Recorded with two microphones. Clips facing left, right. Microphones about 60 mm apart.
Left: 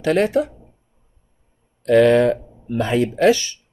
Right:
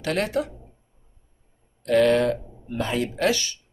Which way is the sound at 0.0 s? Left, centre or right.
Left.